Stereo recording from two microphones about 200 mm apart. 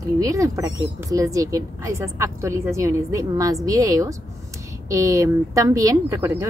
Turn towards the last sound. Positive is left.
turn(degrees=-15)  # may be behind; listen again after turning